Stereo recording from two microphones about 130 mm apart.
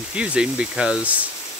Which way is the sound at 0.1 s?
10° right (ahead or behind).